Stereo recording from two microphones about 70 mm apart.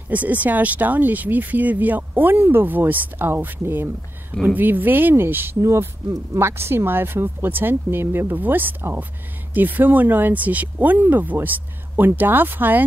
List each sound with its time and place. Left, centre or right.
0.1 s speech: right
5.6 s speech: right